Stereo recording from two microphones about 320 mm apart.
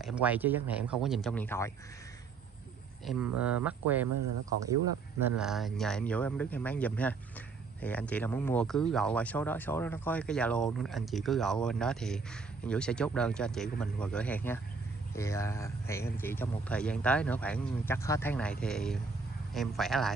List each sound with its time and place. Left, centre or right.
0.0 s speech: centre
3.1 s speech: centre
4.1 s speech: right
5.2 s speech: centre